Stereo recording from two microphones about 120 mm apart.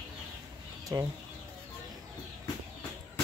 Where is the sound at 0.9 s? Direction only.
30° right (ahead or behind).